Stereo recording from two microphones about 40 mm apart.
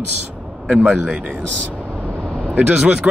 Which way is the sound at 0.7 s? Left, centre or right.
Right.